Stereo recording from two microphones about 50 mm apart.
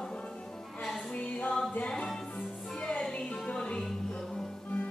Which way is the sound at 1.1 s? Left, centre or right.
Left.